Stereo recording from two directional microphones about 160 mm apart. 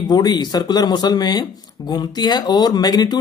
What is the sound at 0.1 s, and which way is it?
Speech, 25° left (ahead or behind).